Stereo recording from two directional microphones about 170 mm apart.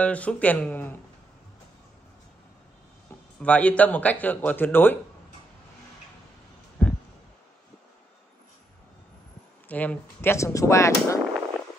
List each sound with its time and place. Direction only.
0.0 s speech: 10° left (ahead or behind)
3.3 s speech: 10° left (ahead or behind)
6.8 s a sound: 5° left (ahead or behind)
9.7 s speech: 10° left (ahead or behind)